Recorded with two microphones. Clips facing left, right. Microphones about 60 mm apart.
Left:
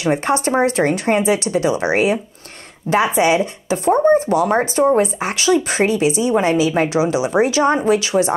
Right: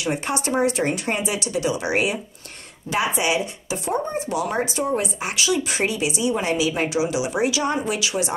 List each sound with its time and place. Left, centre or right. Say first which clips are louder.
0.0 s speech: left 7 dB; left